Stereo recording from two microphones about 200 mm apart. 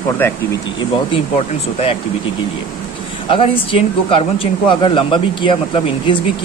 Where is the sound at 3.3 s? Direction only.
25° left (ahead or behind).